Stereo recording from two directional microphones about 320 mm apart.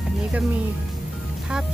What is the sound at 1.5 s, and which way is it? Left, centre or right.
Music, centre.